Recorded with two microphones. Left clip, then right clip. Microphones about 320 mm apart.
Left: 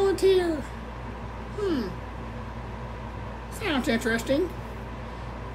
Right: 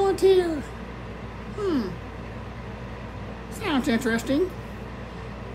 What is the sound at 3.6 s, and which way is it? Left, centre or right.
Child singing, centre.